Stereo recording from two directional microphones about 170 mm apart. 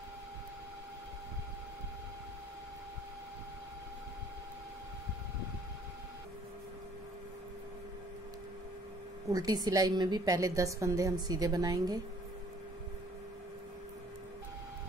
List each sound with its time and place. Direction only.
9.3 s a woman's voice: 20° right (ahead or behind)